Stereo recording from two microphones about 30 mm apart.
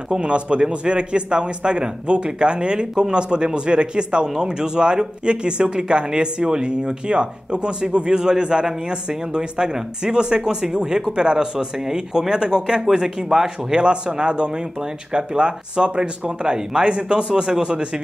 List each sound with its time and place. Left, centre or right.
0.2 s a man's voice: right
13.7 s a man's voice: right